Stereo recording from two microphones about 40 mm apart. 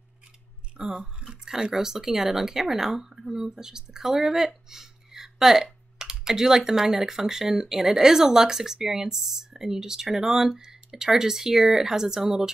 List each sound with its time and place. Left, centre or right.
0.7 s speech: centre